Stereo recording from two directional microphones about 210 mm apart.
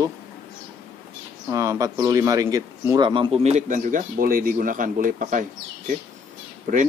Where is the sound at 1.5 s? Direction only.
15° right (ahead or behind); by 5.4 s 40° right (ahead or behind).